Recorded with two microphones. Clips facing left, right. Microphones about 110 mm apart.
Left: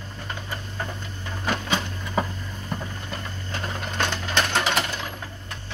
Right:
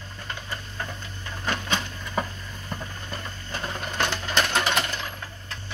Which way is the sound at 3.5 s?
5° right (ahead or behind).